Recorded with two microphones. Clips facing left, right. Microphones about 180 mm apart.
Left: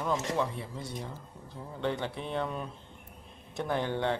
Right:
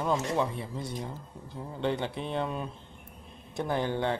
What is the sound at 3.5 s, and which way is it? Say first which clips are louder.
Speech: right 2 dB; 10° right (ahead or behind).